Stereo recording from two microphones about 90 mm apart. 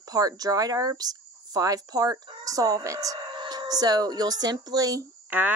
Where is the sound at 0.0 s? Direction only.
45° right (ahead or behind).